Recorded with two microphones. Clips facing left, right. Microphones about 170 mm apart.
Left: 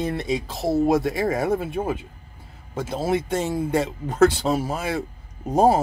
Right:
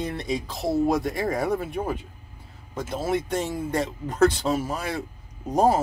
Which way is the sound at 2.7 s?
30° left (ahead or behind).